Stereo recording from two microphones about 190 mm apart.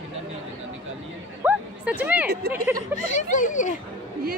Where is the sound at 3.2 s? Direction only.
40° left (ahead or behind).